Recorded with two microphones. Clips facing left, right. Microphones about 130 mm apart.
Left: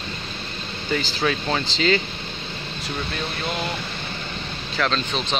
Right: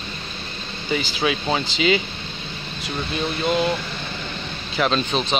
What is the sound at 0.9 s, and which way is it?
Speech, 10° right (ahead or behind).